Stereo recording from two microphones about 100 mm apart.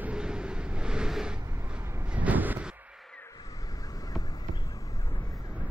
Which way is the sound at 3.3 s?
40° left (ahead or behind).